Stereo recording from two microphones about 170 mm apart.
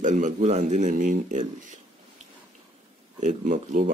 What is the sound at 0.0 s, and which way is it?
Speech, 45° right (ahead or behind).